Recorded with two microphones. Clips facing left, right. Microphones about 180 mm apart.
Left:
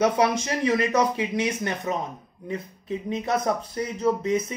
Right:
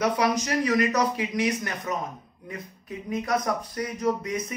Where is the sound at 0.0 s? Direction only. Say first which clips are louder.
Left 3 dB; 25° left (ahead or behind).